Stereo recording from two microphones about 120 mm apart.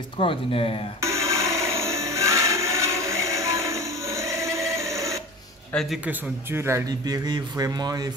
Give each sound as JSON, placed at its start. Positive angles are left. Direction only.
{"t": 0.2, "sound": "speech", "side_deg": 50}
{"t": 1.0, "sound": "a sound", "side_deg": -25}
{"t": 5.7, "sound": "a man's voice", "side_deg": 10}
{"t": 6.0, "sound": "speech", "side_deg": -20}
{"t": 6.9, "sound": "speech", "side_deg": -35}